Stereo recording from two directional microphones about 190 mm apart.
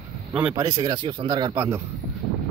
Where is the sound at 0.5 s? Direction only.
20° right (ahead or behind).